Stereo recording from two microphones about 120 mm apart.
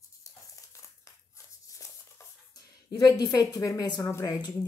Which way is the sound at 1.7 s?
25° left (ahead or behind).